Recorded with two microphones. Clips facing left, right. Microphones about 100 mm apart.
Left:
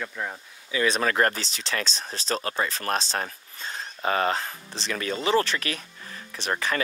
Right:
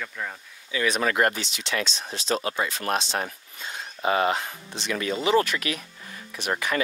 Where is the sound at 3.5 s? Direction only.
35° left (ahead or behind).